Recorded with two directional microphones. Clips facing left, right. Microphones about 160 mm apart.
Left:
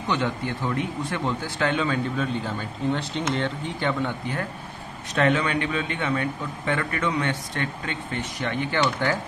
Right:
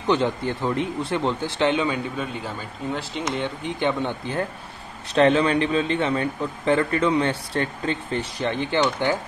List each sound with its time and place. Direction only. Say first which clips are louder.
0.0 s speech: right 4 dB; 30° right (ahead or behind)
2.1 s speech: left 2 dB; 5° right (ahead or behind)
3.3 s a man's voice: right 1 dB; 15° right (ahead or behind)